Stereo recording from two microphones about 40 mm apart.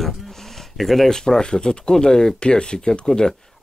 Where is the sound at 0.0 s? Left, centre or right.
Centre.